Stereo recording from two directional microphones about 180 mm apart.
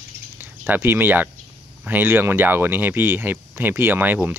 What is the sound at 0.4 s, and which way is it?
Speech, 10° right (ahead or behind).